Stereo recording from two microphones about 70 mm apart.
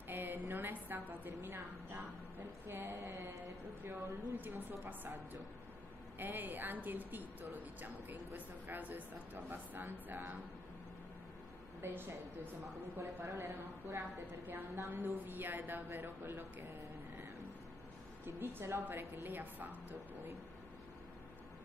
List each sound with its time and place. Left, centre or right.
0.1 s speech: right
11.8 s a woman's voice: right
18.2 s a woman's voice: right